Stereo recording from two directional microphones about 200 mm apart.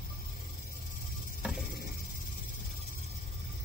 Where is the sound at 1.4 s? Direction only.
Centre (ahead or behind).